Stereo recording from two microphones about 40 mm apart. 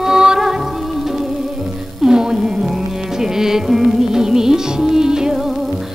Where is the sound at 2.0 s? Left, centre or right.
Centre.